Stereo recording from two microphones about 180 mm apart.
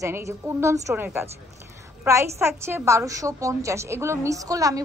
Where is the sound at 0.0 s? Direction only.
15° right (ahead or behind).